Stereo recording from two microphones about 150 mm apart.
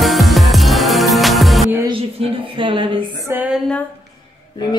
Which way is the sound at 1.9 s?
40° right (ahead or behind).